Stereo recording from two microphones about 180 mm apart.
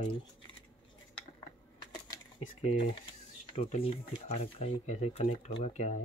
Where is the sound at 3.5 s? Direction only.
35° left (ahead or behind).